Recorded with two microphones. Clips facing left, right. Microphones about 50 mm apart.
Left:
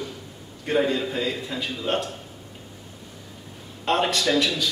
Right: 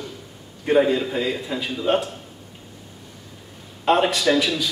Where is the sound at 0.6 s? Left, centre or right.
Centre.